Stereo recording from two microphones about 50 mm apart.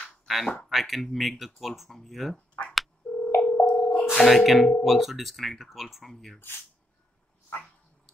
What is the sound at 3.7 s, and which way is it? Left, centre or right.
Music, left.